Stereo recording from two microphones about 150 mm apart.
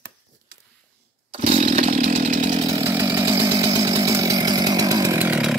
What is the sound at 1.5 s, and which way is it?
Chainsaw, 50° right (ahead or behind).